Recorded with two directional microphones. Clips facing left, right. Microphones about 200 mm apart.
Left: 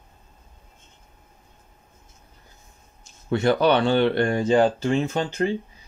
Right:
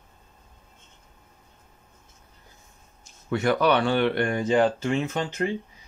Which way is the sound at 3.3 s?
30° left (ahead or behind).